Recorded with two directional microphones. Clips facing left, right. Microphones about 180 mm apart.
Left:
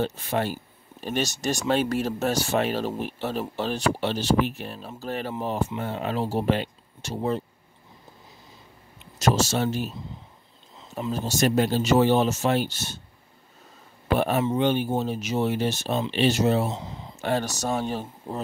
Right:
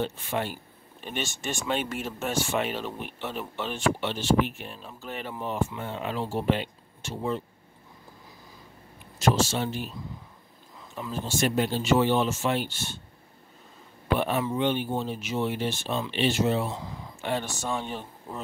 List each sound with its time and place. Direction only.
0.0 s speech: 40° left (ahead or behind)
9.2 s speech: 40° left (ahead or behind)
10.8 s a sound: 25° left (ahead or behind)
11.2 s speech: 40° left (ahead or behind)
14.1 s speech: 45° left (ahead or behind)
16.6 s a sound: 25° left (ahead or behind)
17.2 s speech: 40° left (ahead or behind)